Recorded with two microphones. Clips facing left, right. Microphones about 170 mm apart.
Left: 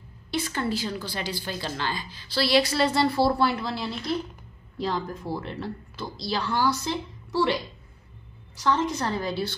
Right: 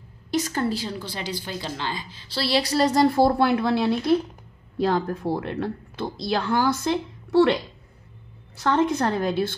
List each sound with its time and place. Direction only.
0.3 s a woman's voice: 40° right (ahead or behind); by 7.5 s 60° right (ahead or behind)
8.5 s a woman's voice: 60° right (ahead or behind)